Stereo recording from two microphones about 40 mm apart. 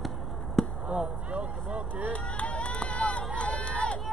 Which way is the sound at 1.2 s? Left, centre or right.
Right.